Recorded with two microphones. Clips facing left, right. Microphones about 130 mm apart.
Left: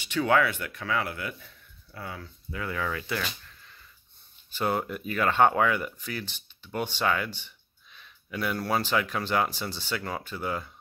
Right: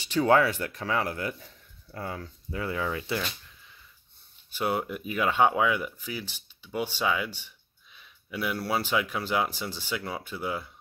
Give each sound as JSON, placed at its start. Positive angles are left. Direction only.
{"t": 0.0, "sound": "speech", "side_deg": -35}
{"t": 4.5, "sound": "speech", "side_deg": -10}